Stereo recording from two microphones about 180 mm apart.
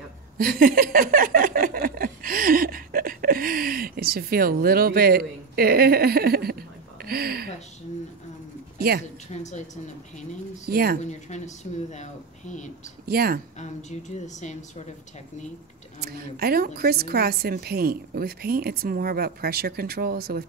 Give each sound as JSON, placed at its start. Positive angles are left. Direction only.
{"t": 0.4, "sound": "a sound", "side_deg": -55}
{"t": 8.7, "sound": "a sound", "side_deg": -60}
{"t": 9.3, "sound": "speech", "side_deg": 40}
{"t": 10.7, "sound": "a woman's voice", "side_deg": -55}
{"t": 11.0, "sound": "speech", "side_deg": 40}
{"t": 13.0, "sound": "a woman's voice", "side_deg": -60}
{"t": 13.6, "sound": "speech", "side_deg": 40}
{"t": 16.0, "sound": "a woman's voice", "side_deg": -60}